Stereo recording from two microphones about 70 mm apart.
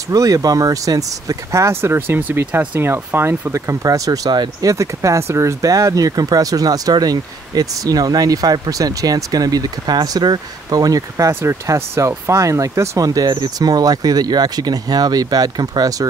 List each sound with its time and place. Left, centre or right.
0.1 s speech: right
3.5 s speech: right
4.6 s speech: right
13.0 s speech: right